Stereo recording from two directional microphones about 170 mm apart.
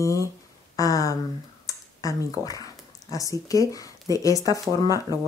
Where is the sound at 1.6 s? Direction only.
20° left (ahead or behind).